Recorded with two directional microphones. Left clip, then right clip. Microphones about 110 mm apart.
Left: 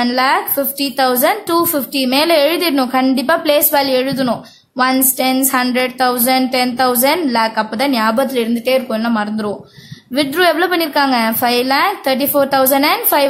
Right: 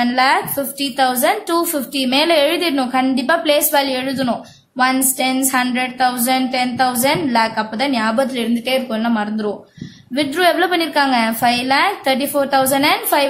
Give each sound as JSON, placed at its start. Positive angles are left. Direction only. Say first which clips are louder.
{"t": 0.0, "sound": "a woman's voice", "louder": "left 1 dB", "side_deg": 30}